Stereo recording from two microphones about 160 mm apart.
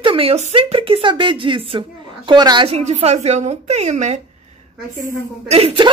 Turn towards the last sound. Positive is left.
turn(degrees=-35)  # may be behind; listen again after turning